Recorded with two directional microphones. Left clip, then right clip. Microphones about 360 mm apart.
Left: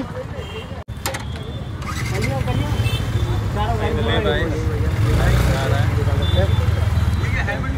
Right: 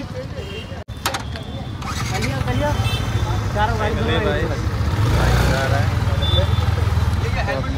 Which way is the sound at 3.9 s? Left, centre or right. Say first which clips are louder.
Even; right.